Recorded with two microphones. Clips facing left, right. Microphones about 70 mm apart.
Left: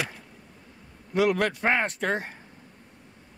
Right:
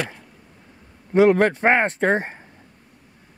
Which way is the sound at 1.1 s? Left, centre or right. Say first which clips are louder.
Right 8 dB; right.